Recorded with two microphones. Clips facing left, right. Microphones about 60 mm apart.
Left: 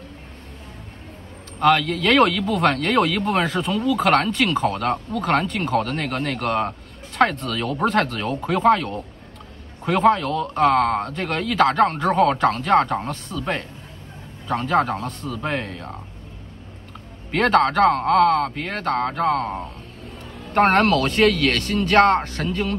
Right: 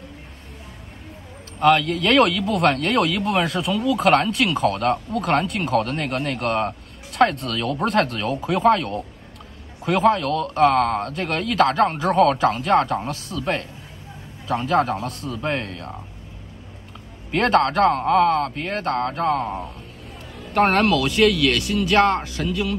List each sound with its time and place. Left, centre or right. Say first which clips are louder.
1.6 s speech: right 1 dB; centre
14.5 s speech: even; centre
17.4 s speech: left 1 dB; centre
20.8 s speech: even; left